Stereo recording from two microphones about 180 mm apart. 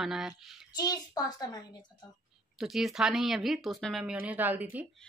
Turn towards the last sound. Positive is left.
turn(degrees=-10)  # may be behind; listen again after turning